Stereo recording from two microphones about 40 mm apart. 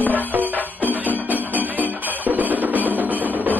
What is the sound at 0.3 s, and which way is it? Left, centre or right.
Music, right.